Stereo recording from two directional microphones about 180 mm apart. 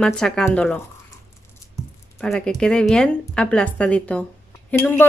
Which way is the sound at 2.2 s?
5° left (ahead or behind).